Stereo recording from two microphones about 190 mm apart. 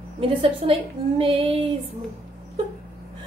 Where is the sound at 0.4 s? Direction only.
30° right (ahead or behind).